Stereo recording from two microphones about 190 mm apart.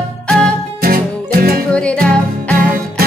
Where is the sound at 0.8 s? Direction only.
50° right (ahead or behind).